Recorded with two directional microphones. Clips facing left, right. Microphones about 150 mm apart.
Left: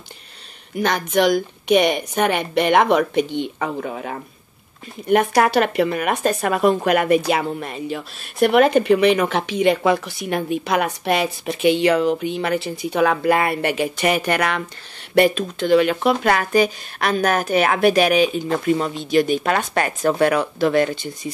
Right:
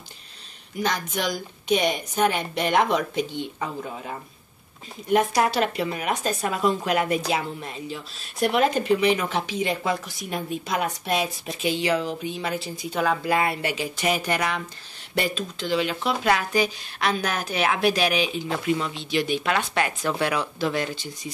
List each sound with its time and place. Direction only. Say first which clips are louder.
0.7 s speech: left 8 dB; 65° left (ahead or behind)
5.0 s speech: left 5 dB; 60° left (ahead or behind)